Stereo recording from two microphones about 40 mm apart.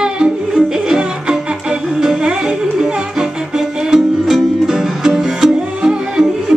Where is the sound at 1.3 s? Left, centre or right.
Centre.